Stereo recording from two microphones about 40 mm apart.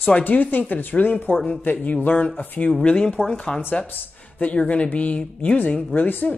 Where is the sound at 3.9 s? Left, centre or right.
Left.